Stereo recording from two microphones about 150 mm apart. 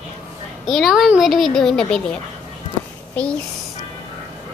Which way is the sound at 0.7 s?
Centre (ahead or behind).